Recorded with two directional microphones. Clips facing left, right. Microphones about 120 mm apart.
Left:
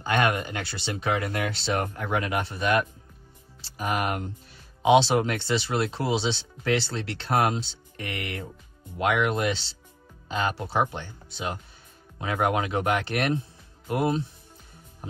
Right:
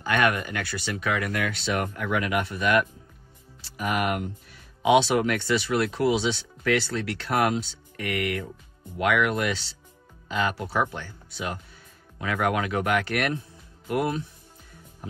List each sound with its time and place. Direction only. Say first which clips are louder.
0.0 s speech: right 1 dB; 25° left (ahead or behind)